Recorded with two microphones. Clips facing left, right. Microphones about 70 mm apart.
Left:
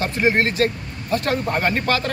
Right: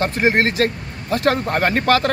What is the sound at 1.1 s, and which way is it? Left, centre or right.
Speech, right.